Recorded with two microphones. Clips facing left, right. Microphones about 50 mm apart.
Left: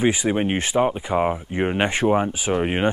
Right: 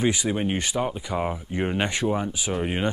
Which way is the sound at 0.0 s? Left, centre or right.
Left.